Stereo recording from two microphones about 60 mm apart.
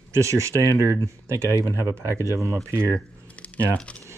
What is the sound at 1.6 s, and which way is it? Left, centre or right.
Speech, left.